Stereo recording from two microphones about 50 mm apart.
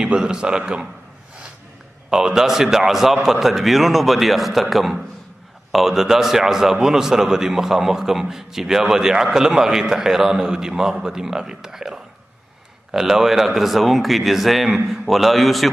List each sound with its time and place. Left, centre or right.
0.0 s a man's voice: centre
2.0 s a man's voice: centre